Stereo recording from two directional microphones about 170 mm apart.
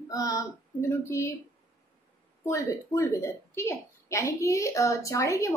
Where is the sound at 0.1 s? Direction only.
20° left (ahead or behind).